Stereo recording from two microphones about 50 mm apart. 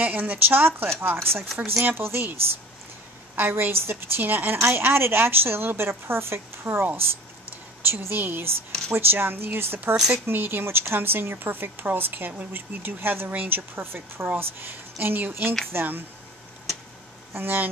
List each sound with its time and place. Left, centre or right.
0.0 s a woman's voice: right
1.6 s speech: centre
1.9 s a woman's voice: right
3.3 s a woman's voice: right
9.8 s speech: right
10.2 s a woman's voice: right
17.3 s speech: right